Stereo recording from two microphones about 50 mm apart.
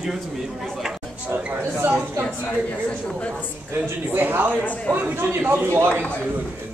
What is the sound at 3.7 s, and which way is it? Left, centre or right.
Speech, right.